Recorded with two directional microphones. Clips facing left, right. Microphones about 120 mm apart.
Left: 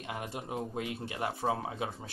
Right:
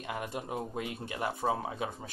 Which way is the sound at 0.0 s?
45° right (ahead or behind).